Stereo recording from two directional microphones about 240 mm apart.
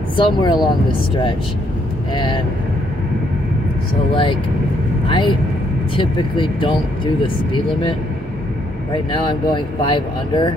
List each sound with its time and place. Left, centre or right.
0.1 s speech: centre
2.1 s speech: centre
4.1 s speech: centre
5.0 s vehicle: left
5.9 s speech: centre
8.9 s speech: left